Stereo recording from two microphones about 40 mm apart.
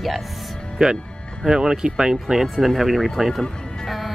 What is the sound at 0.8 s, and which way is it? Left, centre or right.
Speech, centre.